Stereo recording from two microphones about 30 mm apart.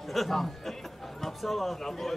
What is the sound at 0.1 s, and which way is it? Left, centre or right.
Speech, centre.